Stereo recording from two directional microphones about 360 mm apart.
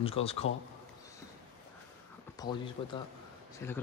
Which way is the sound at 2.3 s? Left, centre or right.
Centre.